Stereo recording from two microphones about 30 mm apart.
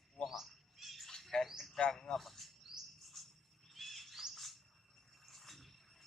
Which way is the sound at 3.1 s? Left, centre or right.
Centre.